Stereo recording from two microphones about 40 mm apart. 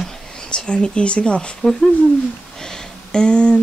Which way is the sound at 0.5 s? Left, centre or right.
Left.